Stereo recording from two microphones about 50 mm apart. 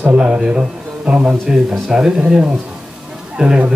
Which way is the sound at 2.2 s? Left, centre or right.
Right.